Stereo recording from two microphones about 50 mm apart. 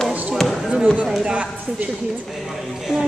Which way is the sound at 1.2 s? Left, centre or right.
Right.